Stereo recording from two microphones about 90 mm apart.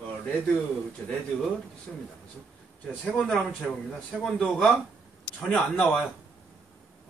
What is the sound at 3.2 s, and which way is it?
Speech, 10° left (ahead or behind).